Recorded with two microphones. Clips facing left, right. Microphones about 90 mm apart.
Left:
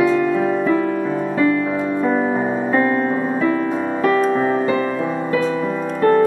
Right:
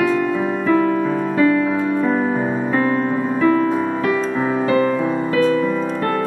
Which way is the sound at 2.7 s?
25° left (ahead or behind).